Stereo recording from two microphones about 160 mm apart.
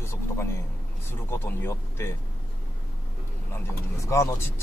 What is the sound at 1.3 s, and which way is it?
Speech, 15° left (ahead or behind).